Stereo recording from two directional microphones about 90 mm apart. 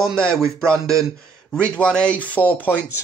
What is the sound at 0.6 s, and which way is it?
Speech, 35° right (ahead or behind).